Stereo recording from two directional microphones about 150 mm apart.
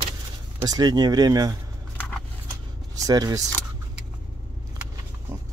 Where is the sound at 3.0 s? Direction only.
25° right (ahead or behind).